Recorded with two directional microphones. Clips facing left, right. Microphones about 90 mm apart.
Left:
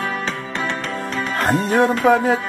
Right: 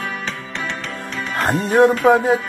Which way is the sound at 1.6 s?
20° right (ahead or behind).